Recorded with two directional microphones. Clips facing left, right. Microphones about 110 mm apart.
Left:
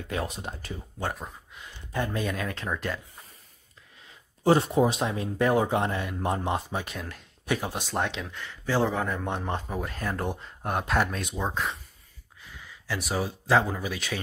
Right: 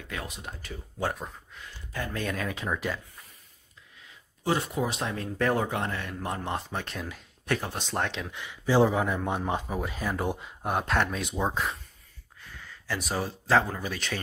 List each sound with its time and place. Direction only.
0.1 s speech: 30° left (ahead or behind)
1.0 s speech: centre (ahead or behind)
4.5 s speech: 30° left (ahead or behind)
5.0 s speech: 15° left (ahead or behind)
6.5 s speech: 5° left (ahead or behind)
8.3 s speech: 15° right (ahead or behind)
12.4 s a sound: 10° left (ahead or behind)
12.9 s speech: centre (ahead or behind)